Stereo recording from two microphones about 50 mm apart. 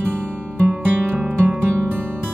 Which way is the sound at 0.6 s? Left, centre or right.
Right.